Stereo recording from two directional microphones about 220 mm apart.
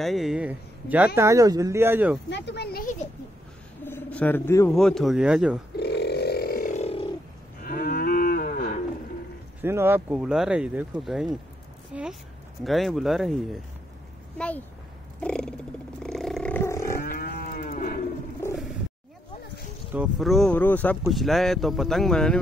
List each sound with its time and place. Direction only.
0.0 s speech: centre (ahead or behind)
2.2 s speech: 50° left (ahead or behind)
3.8 s speech: 10° left (ahead or behind)
5.8 s a sound: 50° left (ahead or behind); by 7.1 s 30° left (ahead or behind)
7.6 s cattle: 40° left (ahead or behind)
9.6 s speech: 10° right (ahead or behind)
15.1 s purr: 5° left (ahead or behind)
16.0 s roaring cats: centre (ahead or behind)
17.0 s moo: 40° left (ahead or behind)
19.9 s speech: 5° right (ahead or behind)